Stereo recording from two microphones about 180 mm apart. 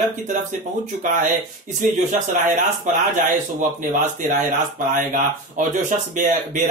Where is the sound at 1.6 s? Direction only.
45° right (ahead or behind).